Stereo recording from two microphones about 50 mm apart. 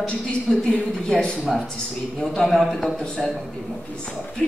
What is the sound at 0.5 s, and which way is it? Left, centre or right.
Speech, centre.